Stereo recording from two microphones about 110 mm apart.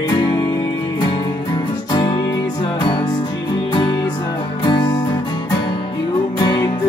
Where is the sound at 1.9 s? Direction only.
40° left (ahead or behind).